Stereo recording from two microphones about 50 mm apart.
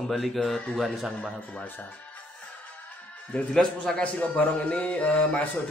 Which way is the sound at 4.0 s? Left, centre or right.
Left.